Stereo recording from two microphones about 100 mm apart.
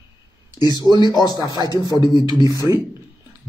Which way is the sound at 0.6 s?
40° left (ahead or behind).